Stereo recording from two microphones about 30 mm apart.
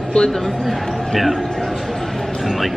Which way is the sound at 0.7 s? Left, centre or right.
Centre.